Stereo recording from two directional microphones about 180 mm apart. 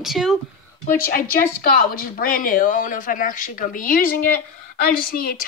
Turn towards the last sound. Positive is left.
turn(degrees=55)  # may be behind; listen again after turning